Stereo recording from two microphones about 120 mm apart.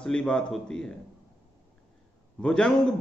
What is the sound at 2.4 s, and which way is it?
Speech, 5° left (ahead or behind).